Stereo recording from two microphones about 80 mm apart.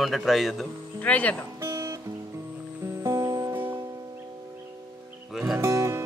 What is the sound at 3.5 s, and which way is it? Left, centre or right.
Music, right.